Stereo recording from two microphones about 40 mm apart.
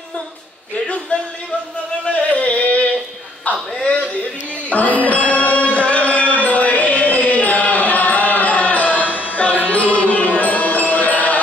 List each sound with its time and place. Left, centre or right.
1.1 s speech: left
2.0 s music: left
4.6 s music: left